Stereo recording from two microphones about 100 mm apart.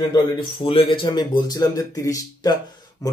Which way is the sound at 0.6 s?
65° left (ahead or behind).